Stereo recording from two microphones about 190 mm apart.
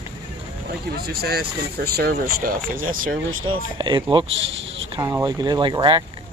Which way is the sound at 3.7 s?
25° right (ahead or behind).